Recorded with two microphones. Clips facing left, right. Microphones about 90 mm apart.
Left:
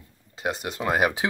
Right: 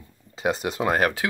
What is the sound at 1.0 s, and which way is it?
Speech, 20° left (ahead or behind).